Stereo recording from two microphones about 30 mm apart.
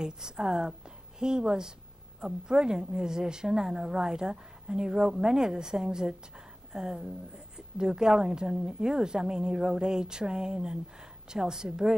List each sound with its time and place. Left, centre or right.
0.0 s a woman's voice: right